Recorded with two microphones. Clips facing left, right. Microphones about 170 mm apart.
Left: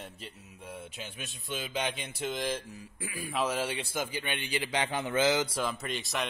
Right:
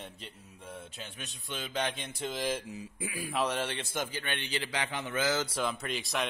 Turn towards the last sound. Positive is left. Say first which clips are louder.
# even
turn(degrees=0)  # may be behind; listen again after turning